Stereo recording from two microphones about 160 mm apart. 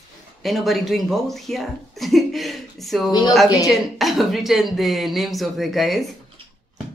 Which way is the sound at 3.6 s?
Centre (ahead or behind).